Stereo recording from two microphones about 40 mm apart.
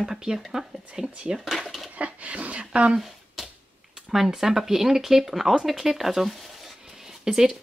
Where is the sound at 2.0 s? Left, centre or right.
Right.